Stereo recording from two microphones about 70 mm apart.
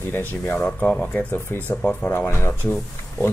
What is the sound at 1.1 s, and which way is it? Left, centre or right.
Speech, left.